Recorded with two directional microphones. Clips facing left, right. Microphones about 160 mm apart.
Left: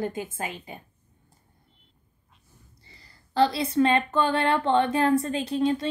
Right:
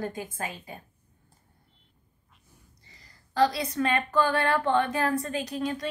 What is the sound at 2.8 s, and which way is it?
A woman's voice, 30° left (ahead or behind).